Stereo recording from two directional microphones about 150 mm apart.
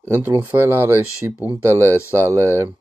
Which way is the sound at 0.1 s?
15° right (ahead or behind).